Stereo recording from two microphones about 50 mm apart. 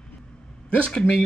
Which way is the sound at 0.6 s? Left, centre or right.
Left.